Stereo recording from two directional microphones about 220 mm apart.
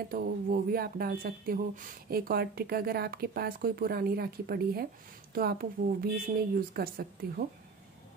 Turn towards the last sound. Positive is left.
turn(degrees=-45)  # may be behind; listen again after turning